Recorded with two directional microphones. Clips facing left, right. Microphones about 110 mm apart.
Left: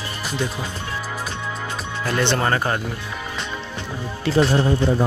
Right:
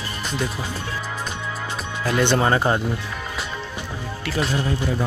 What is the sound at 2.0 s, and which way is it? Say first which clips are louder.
Speech: right 2 dB; 10° right (ahead or behind).